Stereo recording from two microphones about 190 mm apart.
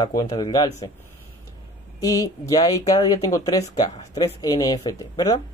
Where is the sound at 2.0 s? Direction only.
20° left (ahead or behind).